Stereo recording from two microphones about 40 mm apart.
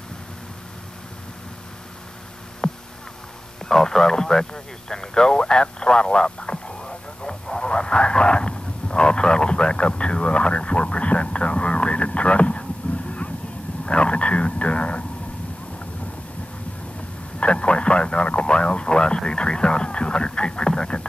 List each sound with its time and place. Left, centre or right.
2.6 s hum: centre
3.6 s radio: centre; by 13.3 s left
13.8 s a sound: left
17.4 s radio: left